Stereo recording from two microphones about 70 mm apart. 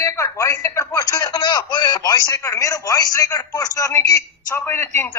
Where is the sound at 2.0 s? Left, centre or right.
Left.